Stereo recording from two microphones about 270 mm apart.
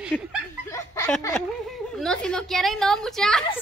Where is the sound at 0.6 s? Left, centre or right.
Centre.